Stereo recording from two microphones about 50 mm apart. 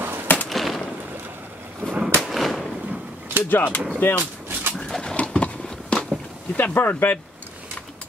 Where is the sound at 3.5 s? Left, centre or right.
Left.